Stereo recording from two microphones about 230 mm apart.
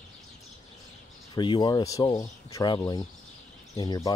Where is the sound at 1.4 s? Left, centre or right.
Centre.